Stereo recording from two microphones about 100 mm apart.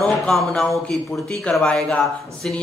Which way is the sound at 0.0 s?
5° left (ahead or behind).